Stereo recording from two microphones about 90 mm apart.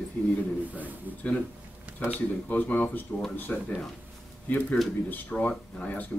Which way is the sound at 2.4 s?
20° left (ahead or behind).